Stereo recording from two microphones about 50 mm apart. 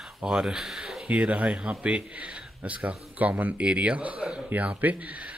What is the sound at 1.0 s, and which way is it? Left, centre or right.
Speech, right.